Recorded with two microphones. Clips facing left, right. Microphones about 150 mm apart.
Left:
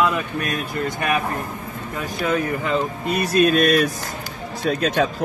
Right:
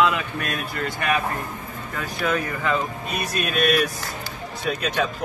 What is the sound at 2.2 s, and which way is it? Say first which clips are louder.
Speech: left 2 dB; 25° left (ahead or behind).